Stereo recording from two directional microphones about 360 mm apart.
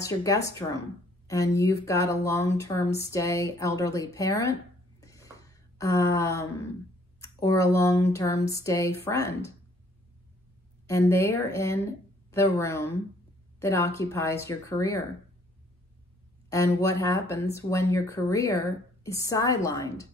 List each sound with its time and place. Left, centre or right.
0.0 s speech: centre
5.0 s a sound: centre
7.2 s speech: centre
10.9 s speech: centre
16.4 s speech: centre